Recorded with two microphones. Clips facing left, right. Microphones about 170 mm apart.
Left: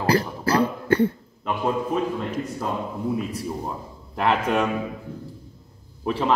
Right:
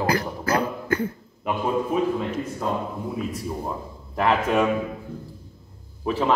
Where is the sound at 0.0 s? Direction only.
30° left (ahead or behind).